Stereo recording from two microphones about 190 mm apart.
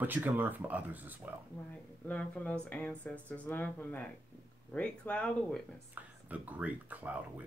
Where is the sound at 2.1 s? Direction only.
10° left (ahead or behind).